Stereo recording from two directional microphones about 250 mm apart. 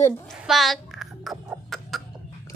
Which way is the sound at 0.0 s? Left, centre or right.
Centre.